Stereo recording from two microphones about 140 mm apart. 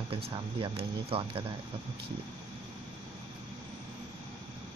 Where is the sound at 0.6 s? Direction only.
40° right (ahead or behind).